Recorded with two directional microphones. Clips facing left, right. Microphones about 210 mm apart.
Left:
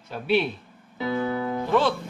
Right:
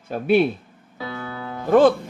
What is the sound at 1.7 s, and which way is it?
Speech, 50° right (ahead or behind).